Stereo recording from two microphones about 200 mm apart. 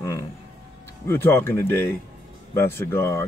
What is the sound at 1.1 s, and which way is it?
Speech, 10° left (ahead or behind).